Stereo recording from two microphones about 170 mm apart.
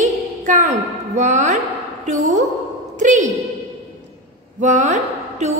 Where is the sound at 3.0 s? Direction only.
45° right (ahead or behind).